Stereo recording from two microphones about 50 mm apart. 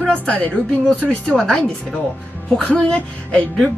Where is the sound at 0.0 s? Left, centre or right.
Left.